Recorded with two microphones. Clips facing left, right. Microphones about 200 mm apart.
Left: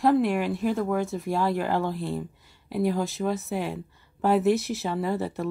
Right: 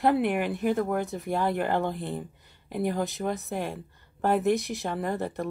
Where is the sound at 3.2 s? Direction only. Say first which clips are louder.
Left 2 dB; centre (ahead or behind).